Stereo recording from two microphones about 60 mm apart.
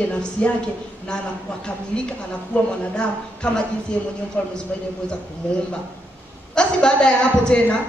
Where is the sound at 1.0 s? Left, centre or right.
Centre.